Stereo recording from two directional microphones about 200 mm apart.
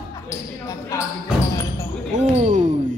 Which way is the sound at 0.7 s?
15° left (ahead or behind).